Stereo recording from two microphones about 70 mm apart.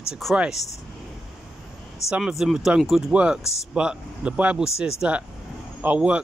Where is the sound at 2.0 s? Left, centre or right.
Centre.